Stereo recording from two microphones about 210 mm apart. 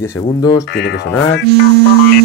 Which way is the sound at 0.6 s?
55° left (ahead or behind).